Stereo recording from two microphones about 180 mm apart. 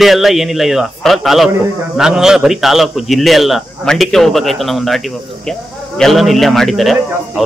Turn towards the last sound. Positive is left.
turn(degrees=0)  # may be behind; listen again after turning